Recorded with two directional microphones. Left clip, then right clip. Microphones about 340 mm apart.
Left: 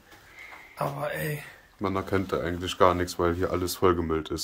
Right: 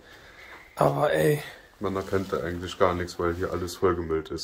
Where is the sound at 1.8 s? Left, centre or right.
Left.